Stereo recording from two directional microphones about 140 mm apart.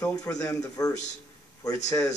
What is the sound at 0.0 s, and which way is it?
A man's voice, 25° left (ahead or behind).